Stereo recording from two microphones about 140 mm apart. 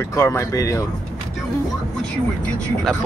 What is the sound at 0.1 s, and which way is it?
Speech, 20° left (ahead or behind).